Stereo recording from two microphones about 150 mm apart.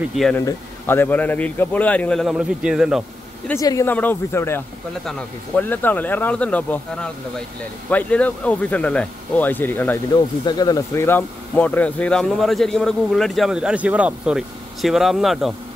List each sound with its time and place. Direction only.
0.1 s speech: centre (ahead or behind)
0.4 s speech: 15° left (ahead or behind); by 3.0 s centre (ahead or behind)
3.5 s speech: 20° left (ahead or behind)
10.4 s speech: 25° left (ahead or behind); by 15.5 s centre (ahead or behind)